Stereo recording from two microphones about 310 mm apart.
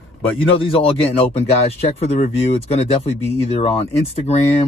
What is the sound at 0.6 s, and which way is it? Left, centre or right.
Speech, centre.